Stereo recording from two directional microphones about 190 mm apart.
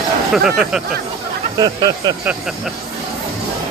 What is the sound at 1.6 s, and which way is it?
Speech, 20° right (ahead or behind).